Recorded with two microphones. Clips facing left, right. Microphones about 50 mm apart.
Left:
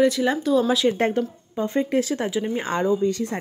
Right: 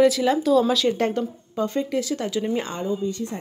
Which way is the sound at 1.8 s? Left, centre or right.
Left.